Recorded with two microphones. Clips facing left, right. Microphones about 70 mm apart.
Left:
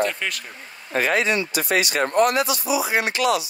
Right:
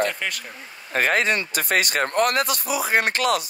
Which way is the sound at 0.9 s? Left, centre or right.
Right.